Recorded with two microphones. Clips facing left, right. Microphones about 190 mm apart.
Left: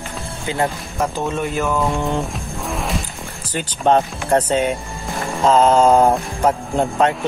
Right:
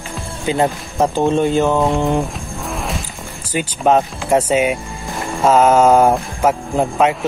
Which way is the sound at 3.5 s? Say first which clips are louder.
Right 2 dB; 5° right (ahead or behind).